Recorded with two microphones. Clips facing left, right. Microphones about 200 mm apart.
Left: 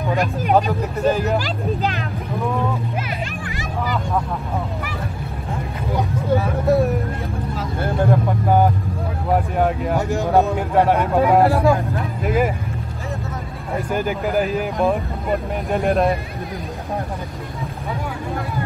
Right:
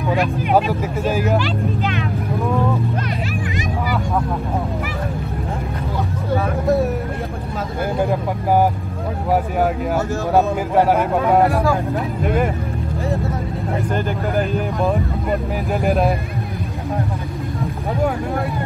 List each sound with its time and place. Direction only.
0.6 s a man's voice: 5° right (ahead or behind)
1.4 s speech: 40° left (ahead or behind)
7.8 s speech: 10° right (ahead or behind)
10.3 s a man's voice: centre (ahead or behind)
11.4 s speech: 25° left (ahead or behind)
12.2 s a man's voice: 5° left (ahead or behind)
13.9 s a man's voice: centre (ahead or behind)